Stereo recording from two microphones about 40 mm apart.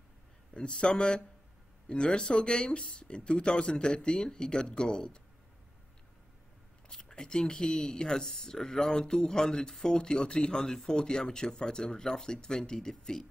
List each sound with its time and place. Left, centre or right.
0.6 s speech: left
6.9 s speech: centre